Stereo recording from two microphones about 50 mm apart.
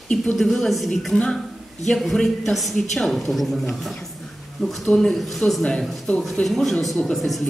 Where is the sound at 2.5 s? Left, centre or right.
Centre.